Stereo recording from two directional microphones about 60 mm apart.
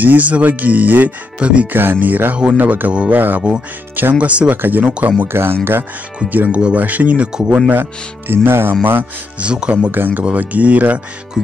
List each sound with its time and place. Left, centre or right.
0.0 s speech: right
1.7 s speech: right
6.1 s speech: right
7.3 s speech: centre
7.7 s speech: right
9.4 s speech: centre
9.8 s speech: right
11.4 s music: centre